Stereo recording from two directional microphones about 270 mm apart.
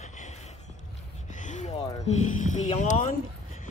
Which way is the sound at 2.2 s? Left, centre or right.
Left.